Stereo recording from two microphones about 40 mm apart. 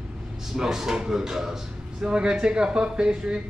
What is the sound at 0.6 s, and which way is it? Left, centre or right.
Speech, centre.